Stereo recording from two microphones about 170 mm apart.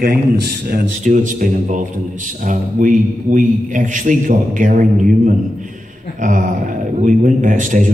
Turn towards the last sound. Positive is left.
turn(degrees=-50)  # may be behind; listen again after turning